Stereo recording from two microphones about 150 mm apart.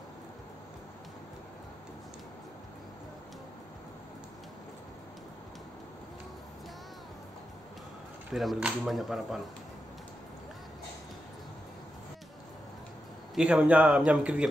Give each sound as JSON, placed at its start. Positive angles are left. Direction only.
{"t": 8.3, "sound": "speech", "side_deg": 0}
{"t": 13.3, "sound": "a man's voice", "side_deg": -5}